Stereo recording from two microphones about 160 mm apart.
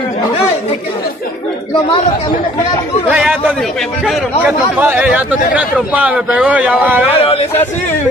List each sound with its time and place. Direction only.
3.1 s a man's voice: 10° right (ahead or behind)
4.7 s a man's voice: 10° right (ahead or behind)
7.1 s speech: 40° left (ahead or behind)